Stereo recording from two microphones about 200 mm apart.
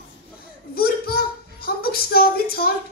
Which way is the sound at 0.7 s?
50° left (ahead or behind).